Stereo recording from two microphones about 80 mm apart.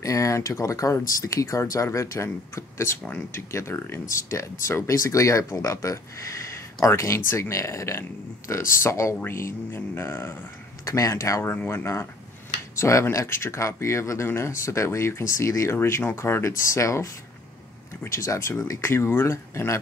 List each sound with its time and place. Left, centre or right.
0.0 s speech: left
10.9 s speech: left
11.5 s speech: left